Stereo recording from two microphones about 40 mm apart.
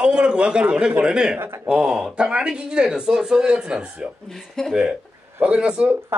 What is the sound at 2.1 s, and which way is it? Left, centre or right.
Speech, right.